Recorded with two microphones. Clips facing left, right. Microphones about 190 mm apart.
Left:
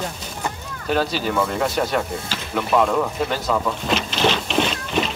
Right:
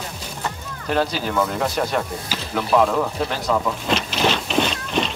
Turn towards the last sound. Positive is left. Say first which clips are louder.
# even
turn(degrees=0)  # may be behind; listen again after turning